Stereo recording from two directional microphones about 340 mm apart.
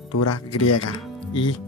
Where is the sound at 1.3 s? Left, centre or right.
Centre.